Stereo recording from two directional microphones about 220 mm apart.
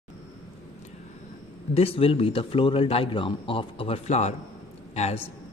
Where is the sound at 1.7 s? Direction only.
25° left (ahead or behind).